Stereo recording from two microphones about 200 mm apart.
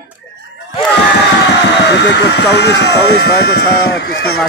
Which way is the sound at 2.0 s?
60° left (ahead or behind).